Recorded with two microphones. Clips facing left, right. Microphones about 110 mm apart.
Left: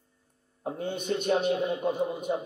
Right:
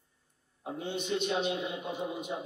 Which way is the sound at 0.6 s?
45° left (ahead or behind).